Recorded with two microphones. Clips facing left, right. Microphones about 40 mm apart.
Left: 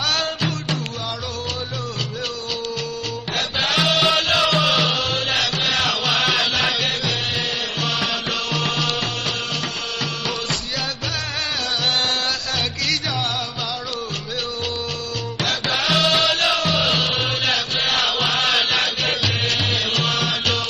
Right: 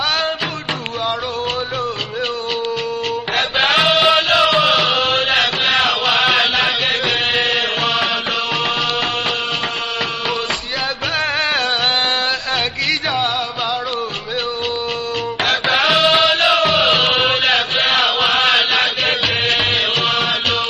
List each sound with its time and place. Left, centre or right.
3.3 s music: right
7.1 s music: right
15.4 s music: right